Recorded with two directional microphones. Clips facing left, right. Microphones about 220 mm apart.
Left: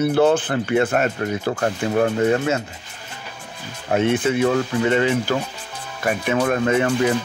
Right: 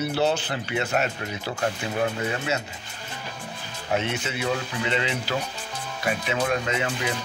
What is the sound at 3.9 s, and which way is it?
Speech, 50° left (ahead or behind).